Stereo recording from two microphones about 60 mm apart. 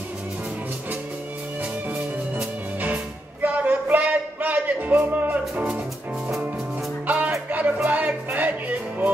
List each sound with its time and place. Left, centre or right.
2.0 s music: right
7.1 s music: right